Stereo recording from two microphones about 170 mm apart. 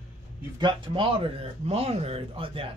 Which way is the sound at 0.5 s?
30° right (ahead or behind).